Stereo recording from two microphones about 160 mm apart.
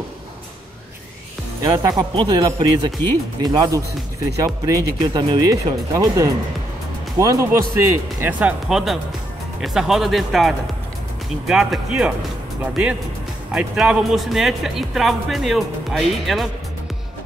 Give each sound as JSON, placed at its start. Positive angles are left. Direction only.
{"t": 1.6, "sound": "speech", "side_deg": -25}
{"t": 13.5, "sound": "speech", "side_deg": -5}